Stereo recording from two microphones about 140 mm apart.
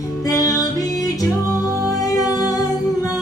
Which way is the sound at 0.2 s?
25° left (ahead or behind).